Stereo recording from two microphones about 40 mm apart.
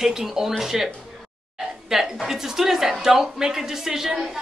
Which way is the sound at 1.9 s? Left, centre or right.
Centre.